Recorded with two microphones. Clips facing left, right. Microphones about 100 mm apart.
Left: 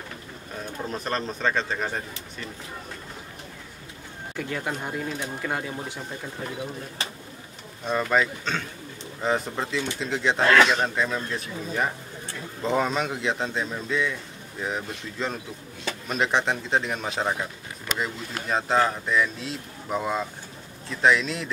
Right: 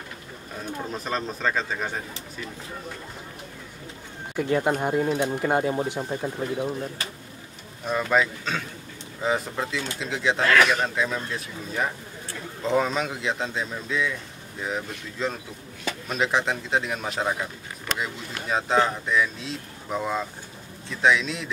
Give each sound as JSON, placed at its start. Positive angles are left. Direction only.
{"t": 0.9, "sound": "speech", "side_deg": 0}
{"t": 4.4, "sound": "speech", "side_deg": -25}
{"t": 7.8, "sound": "speech", "side_deg": 0}
{"t": 10.4, "sound": "speech", "side_deg": 25}
{"t": 10.8, "sound": "speech", "side_deg": 0}